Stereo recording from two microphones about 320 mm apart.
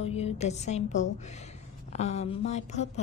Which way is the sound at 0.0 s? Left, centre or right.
Centre.